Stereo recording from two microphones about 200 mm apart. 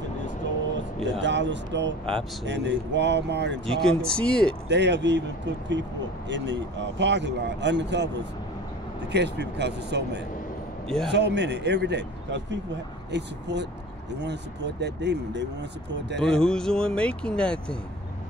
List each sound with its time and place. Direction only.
1.2 s speech: 60° right (ahead or behind)
3.6 s speech: centre (ahead or behind)
4.6 s speech: 60° right (ahead or behind)
9.1 s speech: 60° right (ahead or behind)
16.2 s speech: 5° left (ahead or behind)